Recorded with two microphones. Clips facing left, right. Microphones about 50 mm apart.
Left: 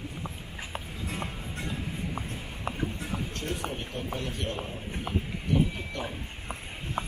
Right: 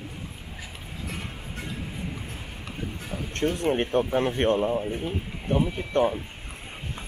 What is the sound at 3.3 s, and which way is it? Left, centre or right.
Speech, right.